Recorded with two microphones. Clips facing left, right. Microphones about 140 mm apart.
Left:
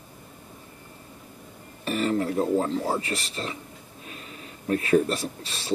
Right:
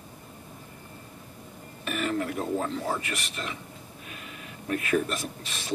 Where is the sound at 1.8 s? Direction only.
30° left (ahead or behind).